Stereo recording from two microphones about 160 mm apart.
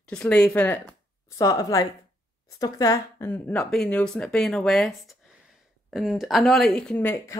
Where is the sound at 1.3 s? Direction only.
20° left (ahead or behind).